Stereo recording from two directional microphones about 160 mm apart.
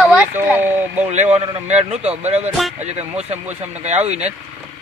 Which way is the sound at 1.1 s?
45° right (ahead or behind).